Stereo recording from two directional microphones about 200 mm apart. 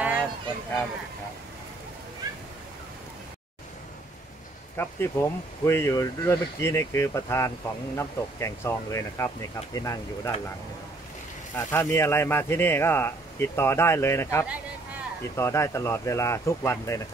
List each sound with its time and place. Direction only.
0.0 s a sound: 10° right (ahead or behind)
4.7 s speech: 10° left (ahead or behind)
11.5 s speech: 10° left (ahead or behind)